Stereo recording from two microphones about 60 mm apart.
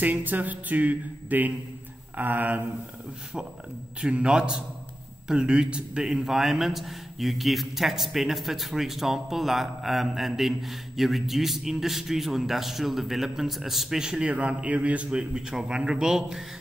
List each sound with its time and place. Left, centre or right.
0.0 s speech: right
4.0 s a man's voice: centre
14.3 s a man's voice: right